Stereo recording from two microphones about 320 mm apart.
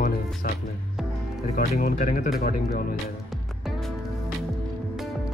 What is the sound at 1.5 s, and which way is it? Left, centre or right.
Speech, left.